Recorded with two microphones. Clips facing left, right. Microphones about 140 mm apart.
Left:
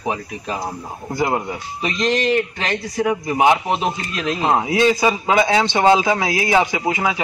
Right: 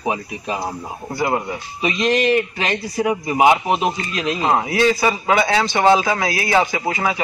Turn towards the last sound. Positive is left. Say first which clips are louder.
# left 1 dB
turn(degrees=15)  # may be behind; listen again after turning